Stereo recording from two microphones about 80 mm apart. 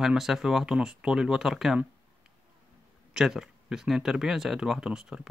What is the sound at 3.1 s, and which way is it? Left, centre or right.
Speech, centre.